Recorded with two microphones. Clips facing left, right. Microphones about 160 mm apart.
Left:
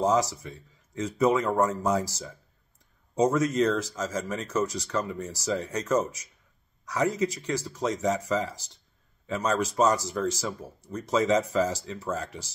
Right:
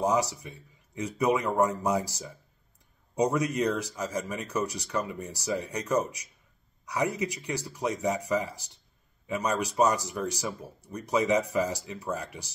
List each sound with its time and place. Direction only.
0.0 s speech: 15° right (ahead or behind)